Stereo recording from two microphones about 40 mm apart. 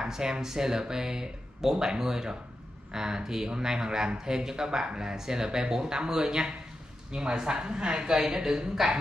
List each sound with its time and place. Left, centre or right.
0.0 s speech: centre